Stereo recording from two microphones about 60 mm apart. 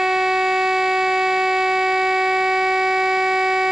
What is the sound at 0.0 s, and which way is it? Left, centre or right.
Siren, centre.